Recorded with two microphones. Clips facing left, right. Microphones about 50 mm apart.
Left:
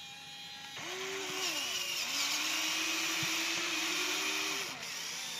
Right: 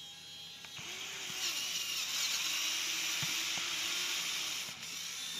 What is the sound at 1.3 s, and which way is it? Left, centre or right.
Blender, left.